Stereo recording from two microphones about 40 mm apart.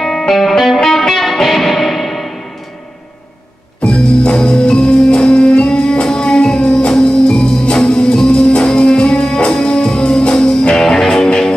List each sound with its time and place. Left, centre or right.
0.3 s music: centre
3.8 s music: left
10.8 s music: centre